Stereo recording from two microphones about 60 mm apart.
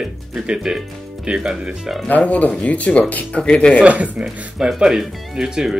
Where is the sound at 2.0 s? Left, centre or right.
Left.